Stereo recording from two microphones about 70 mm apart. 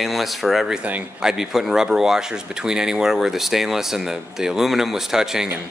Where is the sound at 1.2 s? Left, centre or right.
Centre.